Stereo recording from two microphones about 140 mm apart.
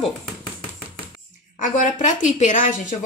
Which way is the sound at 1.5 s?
65° left (ahead or behind).